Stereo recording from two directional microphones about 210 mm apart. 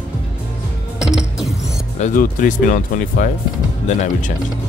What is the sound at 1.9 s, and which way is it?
Speech, 35° left (ahead or behind).